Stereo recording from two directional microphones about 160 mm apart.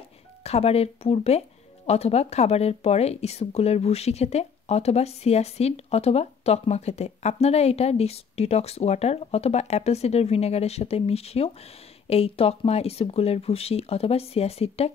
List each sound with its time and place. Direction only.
0.4 s a woman's voice: 40° left (ahead or behind)